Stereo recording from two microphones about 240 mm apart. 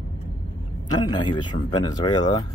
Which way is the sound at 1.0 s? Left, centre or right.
Centre.